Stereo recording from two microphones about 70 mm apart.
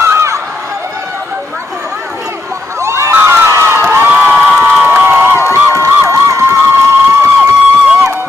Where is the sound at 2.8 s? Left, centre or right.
Right.